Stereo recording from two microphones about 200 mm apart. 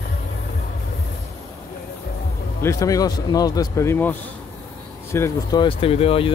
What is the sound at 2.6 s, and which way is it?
Speech, 15° left (ahead or behind).